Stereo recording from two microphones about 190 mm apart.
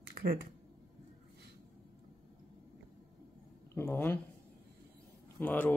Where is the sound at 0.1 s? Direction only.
50° right (ahead or behind).